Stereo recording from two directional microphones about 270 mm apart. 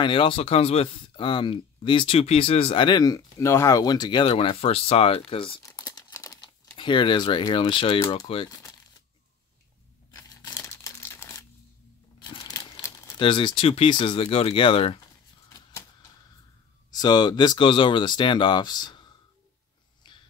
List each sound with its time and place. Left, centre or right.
0.0 s speech: centre
10.1 s crumpling: centre
12.2 s speech: centre
16.9 s speech: centre
20.1 s dog: centre